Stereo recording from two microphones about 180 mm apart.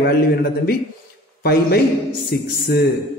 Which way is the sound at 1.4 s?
60° left (ahead or behind).